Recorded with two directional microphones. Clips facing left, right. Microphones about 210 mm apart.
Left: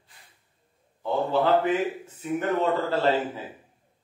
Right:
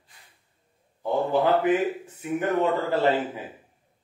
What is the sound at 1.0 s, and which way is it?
A man's voice, 15° right (ahead or behind).